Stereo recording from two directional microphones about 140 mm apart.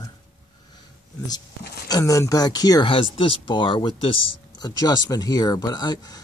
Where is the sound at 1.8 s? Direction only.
25° left (ahead or behind).